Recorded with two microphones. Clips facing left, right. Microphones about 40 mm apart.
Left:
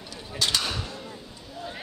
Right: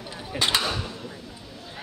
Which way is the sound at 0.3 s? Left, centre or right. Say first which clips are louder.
Right 3 dB; right.